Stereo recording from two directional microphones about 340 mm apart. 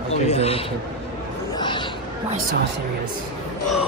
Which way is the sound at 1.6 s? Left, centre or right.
Centre.